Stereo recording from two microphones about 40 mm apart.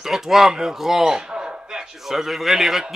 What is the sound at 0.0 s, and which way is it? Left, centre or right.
Speech, centre.